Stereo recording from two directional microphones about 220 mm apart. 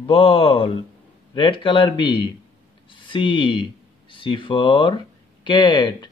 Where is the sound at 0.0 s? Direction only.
25° left (ahead or behind).